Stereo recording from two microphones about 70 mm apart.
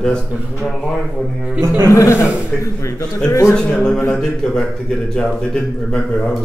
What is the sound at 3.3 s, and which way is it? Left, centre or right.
Speech, left.